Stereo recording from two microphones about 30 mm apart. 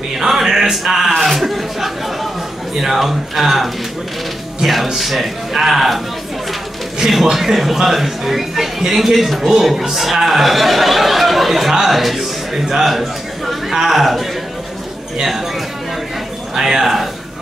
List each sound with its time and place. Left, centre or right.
0.2 s a sound: centre
1.1 s speech: centre
4.9 s speech: centre
7.1 s a man's voice: centre
16.5 s a man's voice: centre